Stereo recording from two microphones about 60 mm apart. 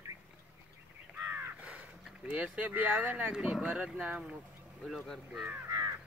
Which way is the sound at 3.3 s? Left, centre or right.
Centre.